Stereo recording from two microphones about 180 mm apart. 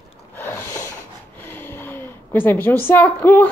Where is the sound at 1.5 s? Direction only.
10° left (ahead or behind).